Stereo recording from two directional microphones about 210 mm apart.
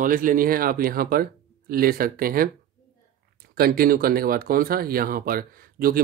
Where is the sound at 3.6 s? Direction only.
45° right (ahead or behind).